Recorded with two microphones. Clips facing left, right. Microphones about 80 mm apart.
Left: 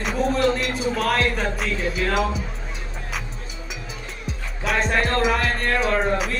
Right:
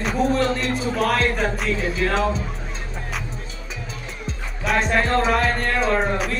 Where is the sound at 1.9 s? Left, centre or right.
Centre.